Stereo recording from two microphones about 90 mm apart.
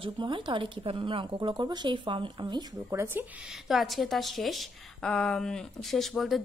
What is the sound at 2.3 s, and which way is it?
Speech, 50° right (ahead or behind).